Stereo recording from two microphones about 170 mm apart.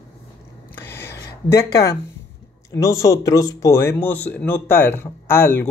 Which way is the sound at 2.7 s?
15° left (ahead or behind).